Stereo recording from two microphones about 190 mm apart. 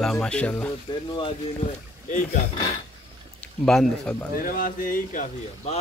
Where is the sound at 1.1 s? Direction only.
30° left (ahead or behind).